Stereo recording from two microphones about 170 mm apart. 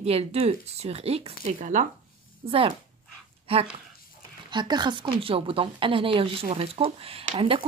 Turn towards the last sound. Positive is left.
turn(degrees=-30)  # may be behind; listen again after turning